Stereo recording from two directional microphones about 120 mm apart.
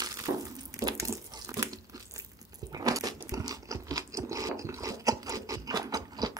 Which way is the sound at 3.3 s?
30° right (ahead or behind).